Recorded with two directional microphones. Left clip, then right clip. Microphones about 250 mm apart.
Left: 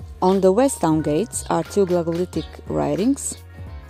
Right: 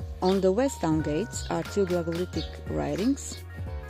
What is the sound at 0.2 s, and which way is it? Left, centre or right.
Speech, left.